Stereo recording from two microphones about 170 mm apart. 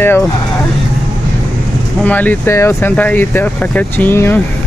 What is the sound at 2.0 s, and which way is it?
Speech, 10° left (ahead or behind).